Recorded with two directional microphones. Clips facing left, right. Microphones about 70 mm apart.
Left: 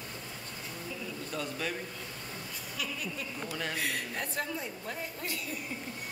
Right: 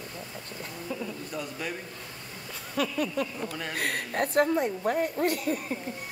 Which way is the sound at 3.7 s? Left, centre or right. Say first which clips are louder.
Right 5 dB; right.